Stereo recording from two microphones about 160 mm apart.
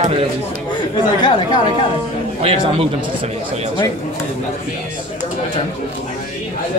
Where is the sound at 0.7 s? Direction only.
25° left (ahead or behind).